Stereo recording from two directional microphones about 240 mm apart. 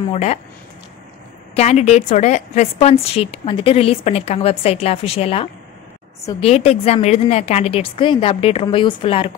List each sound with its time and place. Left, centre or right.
0.1 s a woman's voice: left
1.5 s a woman's voice: left